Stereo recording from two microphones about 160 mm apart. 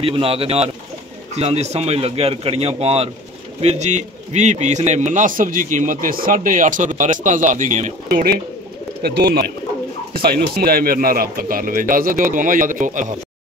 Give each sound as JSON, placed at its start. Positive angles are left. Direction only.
{"t": 0.0, "sound": "a man's voice", "side_deg": -35}
{"t": 8.1, "sound": "speech", "side_deg": -75}
{"t": 10.1, "sound": "speech", "side_deg": -70}